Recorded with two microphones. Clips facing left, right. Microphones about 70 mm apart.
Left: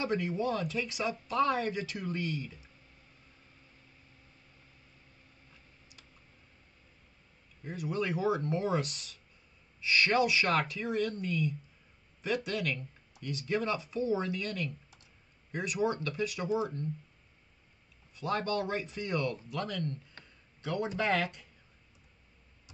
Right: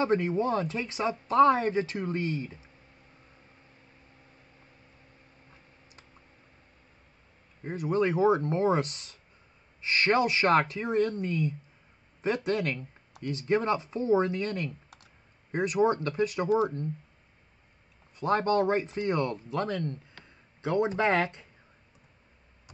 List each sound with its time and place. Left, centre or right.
0.0 s speech: right
5.5 s tick: right
7.6 s speech: right
18.1 s speech: right